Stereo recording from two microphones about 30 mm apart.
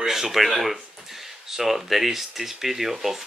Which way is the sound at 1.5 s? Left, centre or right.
Centre.